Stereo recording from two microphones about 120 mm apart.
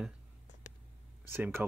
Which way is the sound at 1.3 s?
20° right (ahead or behind).